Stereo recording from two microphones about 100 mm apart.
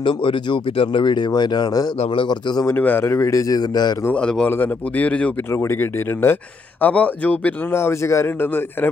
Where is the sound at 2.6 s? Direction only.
20° left (ahead or behind); by 4.0 s 45° left (ahead or behind).